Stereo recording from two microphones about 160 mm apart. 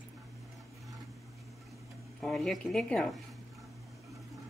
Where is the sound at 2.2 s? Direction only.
Centre (ahead or behind).